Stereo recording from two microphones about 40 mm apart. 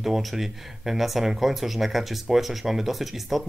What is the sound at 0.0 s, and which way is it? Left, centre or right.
Speech, centre.